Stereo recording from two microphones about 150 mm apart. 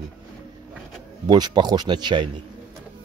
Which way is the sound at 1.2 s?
30° right (ahead or behind).